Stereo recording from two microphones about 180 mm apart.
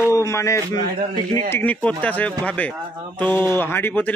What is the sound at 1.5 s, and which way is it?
Speech, 10° left (ahead or behind).